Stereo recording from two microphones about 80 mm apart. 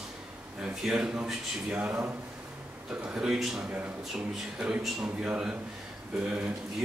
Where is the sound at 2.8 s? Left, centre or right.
Centre.